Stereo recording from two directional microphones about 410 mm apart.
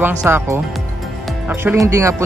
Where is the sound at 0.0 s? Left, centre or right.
Centre.